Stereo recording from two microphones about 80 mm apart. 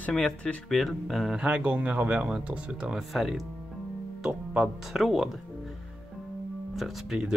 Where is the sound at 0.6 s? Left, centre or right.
Centre.